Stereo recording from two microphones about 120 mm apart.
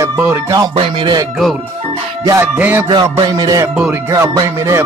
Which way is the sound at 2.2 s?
20° right (ahead or behind).